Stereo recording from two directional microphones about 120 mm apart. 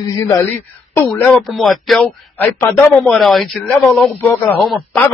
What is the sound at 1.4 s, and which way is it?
Speech, centre (ahead or behind).